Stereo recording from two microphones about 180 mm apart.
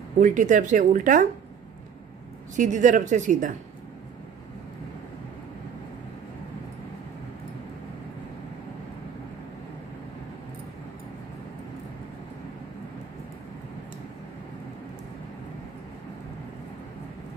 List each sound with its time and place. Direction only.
0.2 s speech: 45° right (ahead or behind)
2.5 s speech: 45° right (ahead or behind)